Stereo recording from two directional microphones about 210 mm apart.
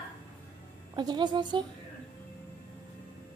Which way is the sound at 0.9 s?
20° right (ahead or behind).